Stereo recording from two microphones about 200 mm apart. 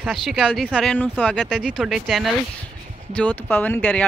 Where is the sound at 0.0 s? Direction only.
Centre (ahead or behind).